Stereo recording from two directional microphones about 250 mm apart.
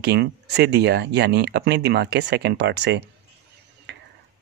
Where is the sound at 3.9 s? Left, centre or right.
Right.